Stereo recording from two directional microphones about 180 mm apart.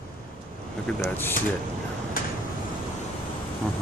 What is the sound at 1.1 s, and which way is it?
Speech, 10° left (ahead or behind).